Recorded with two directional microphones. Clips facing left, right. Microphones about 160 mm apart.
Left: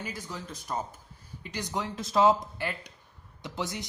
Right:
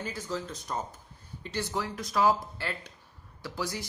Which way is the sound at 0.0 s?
10° left (ahead or behind).